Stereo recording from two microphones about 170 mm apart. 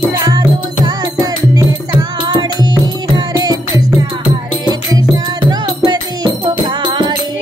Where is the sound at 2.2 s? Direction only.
25° right (ahead or behind).